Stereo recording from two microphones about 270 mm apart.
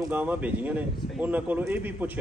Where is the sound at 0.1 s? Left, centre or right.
Centre.